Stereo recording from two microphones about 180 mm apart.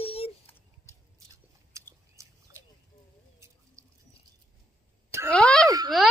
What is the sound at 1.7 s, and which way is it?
Biting, 15° right (ahead or behind).